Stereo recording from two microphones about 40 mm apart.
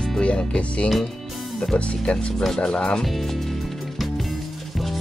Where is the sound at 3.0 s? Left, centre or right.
Centre.